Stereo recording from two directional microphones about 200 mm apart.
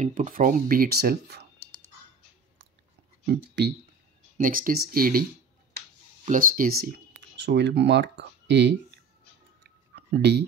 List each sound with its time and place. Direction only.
0.0 s speech: 40° right (ahead or behind)
3.3 s speech: 60° right (ahead or behind)
4.4 s speech: 45° right (ahead or behind)
6.2 s speech: 40° right (ahead or behind); by 8.7 s 60° right (ahead or behind)
9.6 s a sound: 55° right (ahead or behind)